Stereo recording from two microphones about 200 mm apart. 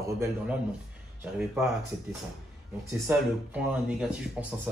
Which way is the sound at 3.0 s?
5° right (ahead or behind).